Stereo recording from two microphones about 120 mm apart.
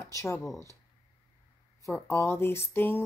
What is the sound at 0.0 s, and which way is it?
Speech, 25° left (ahead or behind).